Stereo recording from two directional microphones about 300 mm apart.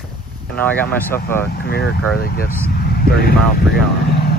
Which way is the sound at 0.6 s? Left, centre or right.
Centre.